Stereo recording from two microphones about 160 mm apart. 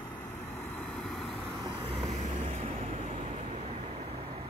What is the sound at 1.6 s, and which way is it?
Vehicle, 35° right (ahead or behind).